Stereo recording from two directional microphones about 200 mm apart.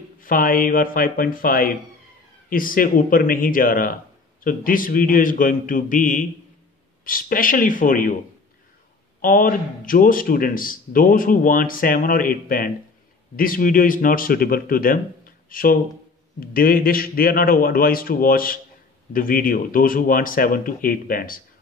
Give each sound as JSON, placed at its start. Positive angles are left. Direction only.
{"t": 0.2, "sound": "a man's voice", "side_deg": 45}
{"t": 9.2, "sound": "a man's voice", "side_deg": 45}